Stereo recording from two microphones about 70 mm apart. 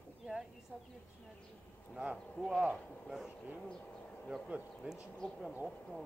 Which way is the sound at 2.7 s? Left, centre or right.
Centre.